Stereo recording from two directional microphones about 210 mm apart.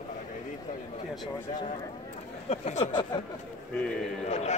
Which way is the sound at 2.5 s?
35° left (ahead or behind).